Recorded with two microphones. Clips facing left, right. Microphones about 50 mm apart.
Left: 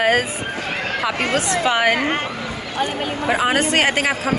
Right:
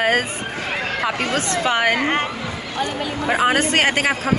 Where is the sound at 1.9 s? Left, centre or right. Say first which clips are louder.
Even; centre.